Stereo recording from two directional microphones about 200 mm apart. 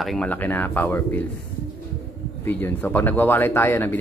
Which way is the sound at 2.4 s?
10° left (ahead or behind).